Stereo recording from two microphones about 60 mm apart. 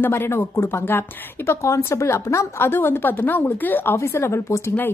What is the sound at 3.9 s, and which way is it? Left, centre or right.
Speech, left.